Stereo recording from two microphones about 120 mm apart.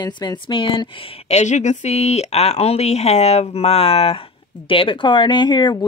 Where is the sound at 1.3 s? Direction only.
75° left (ahead or behind).